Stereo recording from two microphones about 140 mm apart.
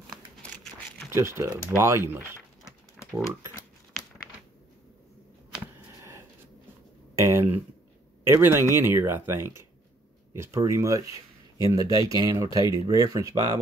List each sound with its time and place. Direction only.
0.4 s crumpling: 10° left (ahead or behind)
1.1 s speech: 20° right (ahead or behind)
7.2 s a sound: 20° right (ahead or behind)
8.2 s speech: 15° right (ahead or behind)